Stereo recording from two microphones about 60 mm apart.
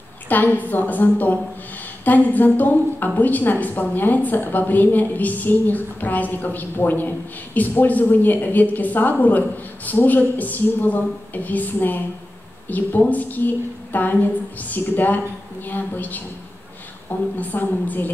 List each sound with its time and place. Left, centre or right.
0.3 s a woman's voice: left
17.4 s a woman's voice: left